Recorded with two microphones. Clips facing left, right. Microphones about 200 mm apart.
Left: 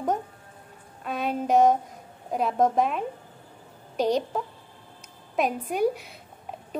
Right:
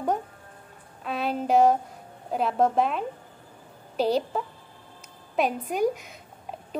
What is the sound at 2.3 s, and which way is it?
A woman's voice, centre (ahead or behind).